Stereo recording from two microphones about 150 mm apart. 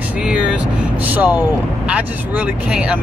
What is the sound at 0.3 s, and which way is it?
Vehicle, 5° right (ahead or behind).